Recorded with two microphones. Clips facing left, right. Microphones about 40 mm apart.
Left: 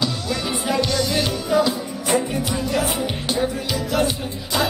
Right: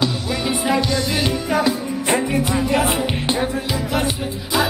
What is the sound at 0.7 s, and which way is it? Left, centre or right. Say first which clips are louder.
Music: right 1 dB; centre.